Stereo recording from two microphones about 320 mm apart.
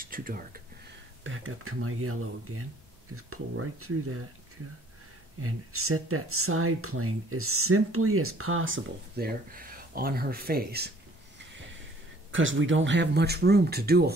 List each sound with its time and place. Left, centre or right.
0.0 s speech: right
1.2 s speech: right
5.4 s speech: right
12.3 s speech: right